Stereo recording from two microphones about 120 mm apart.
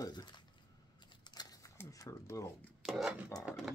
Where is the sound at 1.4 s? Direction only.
35° left (ahead or behind).